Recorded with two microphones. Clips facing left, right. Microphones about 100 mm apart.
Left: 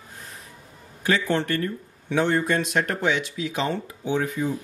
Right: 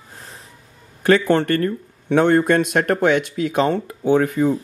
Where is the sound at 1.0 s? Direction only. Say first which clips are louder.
Right 8 dB; 55° right (ahead or behind).